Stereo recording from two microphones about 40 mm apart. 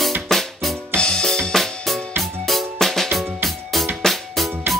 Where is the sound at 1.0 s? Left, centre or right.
Centre.